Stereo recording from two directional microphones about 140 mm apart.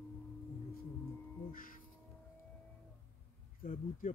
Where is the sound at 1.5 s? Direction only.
80° left.